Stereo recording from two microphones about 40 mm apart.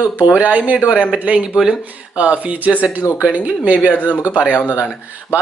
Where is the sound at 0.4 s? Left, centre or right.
Right.